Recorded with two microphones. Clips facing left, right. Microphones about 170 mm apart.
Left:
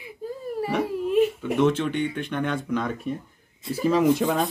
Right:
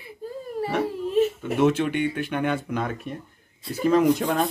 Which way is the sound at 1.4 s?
10° right (ahead or behind).